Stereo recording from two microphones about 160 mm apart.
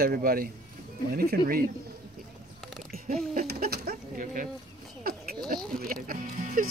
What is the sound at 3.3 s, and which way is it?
Speech, 75° right (ahead or behind).